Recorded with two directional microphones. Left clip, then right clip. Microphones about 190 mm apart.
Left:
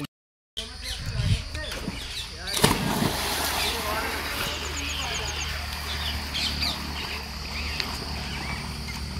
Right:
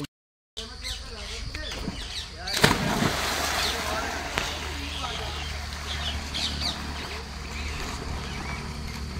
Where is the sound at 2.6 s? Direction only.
5° left (ahead or behind).